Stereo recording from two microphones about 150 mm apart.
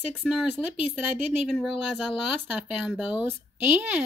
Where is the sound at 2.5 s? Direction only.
5° right (ahead or behind).